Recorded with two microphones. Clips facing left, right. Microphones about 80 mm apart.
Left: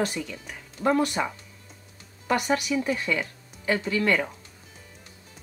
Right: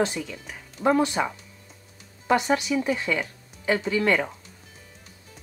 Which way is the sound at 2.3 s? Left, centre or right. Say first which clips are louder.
Right 2 dB; right.